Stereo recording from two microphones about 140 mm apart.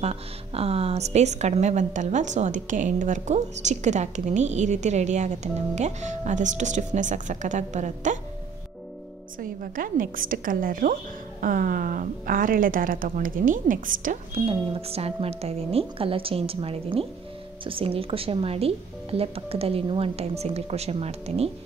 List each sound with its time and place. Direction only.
0.0 s speech: 45° right (ahead or behind)
9.4 s a woman's voice: 85° right
14.3 s speech: 40° right (ahead or behind)